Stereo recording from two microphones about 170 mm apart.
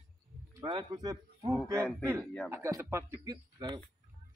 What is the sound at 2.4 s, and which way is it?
A man's voice, 15° right (ahead or behind).